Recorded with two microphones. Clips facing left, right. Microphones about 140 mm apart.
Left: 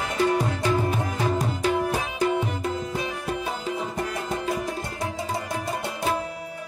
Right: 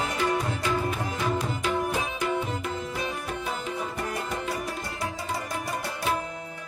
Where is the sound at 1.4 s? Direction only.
40° left (ahead or behind).